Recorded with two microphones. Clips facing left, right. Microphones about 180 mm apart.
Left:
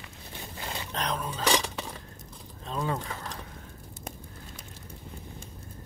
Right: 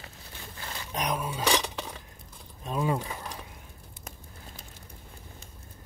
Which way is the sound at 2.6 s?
15° right (ahead or behind).